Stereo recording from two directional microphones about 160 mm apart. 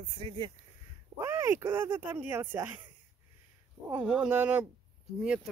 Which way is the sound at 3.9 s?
5° right (ahead or behind).